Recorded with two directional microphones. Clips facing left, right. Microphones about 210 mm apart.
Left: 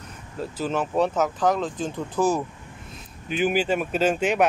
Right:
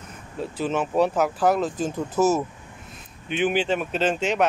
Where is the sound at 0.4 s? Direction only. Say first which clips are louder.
Right 1 dB; centre (ahead or behind).